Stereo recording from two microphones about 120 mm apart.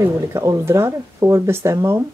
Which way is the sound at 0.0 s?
25° right (ahead or behind).